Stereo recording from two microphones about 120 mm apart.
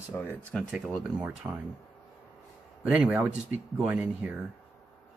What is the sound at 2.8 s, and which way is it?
Speech, 10° right (ahead or behind).